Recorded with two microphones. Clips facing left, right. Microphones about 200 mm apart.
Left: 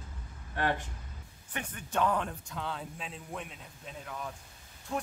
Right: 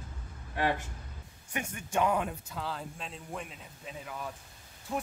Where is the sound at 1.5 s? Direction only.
10° right (ahead or behind).